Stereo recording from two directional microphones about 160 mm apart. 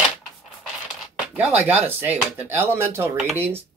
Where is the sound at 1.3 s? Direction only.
10° right (ahead or behind).